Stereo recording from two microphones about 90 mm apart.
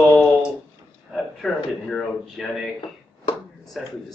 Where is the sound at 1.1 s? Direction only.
5° left (ahead or behind).